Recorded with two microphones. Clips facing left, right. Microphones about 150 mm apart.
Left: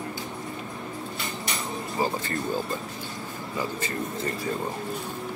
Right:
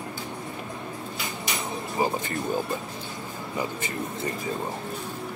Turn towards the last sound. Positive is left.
turn(degrees=-20)  # may be behind; listen again after turning